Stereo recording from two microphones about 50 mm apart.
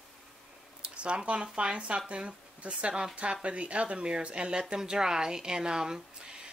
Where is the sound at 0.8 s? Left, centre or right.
Right.